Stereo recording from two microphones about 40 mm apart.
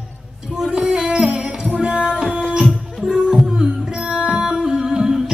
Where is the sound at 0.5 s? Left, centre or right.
Centre.